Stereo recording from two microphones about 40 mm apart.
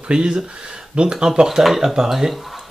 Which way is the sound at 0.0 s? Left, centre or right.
Right.